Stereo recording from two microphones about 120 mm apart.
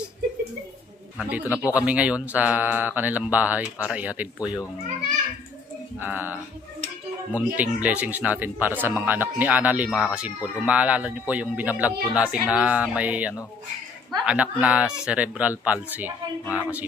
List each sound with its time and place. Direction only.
1.3 s speech: 10° right (ahead or behind)
5.9 s speech: 15° right (ahead or behind)
7.5 s speech: 10° right (ahead or behind)